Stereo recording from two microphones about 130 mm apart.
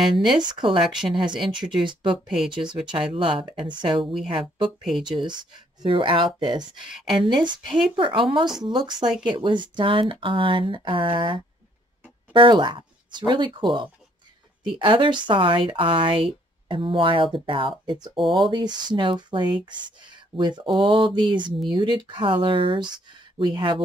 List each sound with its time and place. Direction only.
0.0 s speech: centre (ahead or behind)
0.4 s speech: 35° right (ahead or behind)
2.2 s speech: 5° right (ahead or behind)
2.5 s speech: 35° right (ahead or behind)
4.6 s speech: centre (ahead or behind)
5.2 s speech: 35° right (ahead or behind)
12.3 s a sound: 40° right (ahead or behind)
13.3 s speech: 40° right (ahead or behind)
18.2 s speech: centre (ahead or behind)
18.5 s speech: 35° right (ahead or behind)